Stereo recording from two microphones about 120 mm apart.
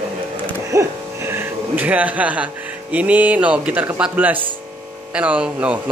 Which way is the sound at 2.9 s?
10° right (ahead or behind).